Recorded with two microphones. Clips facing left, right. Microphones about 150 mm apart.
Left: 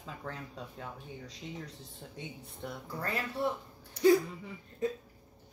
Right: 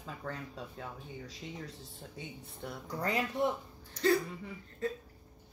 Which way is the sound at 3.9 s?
10° left (ahead or behind).